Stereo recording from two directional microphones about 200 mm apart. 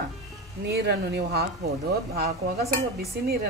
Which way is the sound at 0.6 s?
55° right (ahead or behind).